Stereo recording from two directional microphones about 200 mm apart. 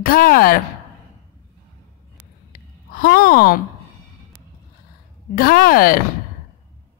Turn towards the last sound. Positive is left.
turn(degrees=45)  # may be behind; listen again after turning